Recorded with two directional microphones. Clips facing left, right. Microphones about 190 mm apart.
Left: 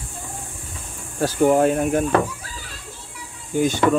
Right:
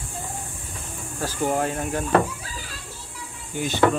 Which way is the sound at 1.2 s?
65° left (ahead or behind).